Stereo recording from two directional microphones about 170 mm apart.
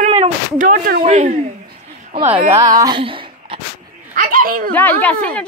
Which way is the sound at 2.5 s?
20° right (ahead or behind).